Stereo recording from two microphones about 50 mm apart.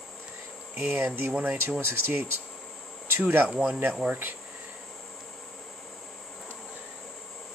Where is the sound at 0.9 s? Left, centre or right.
Right.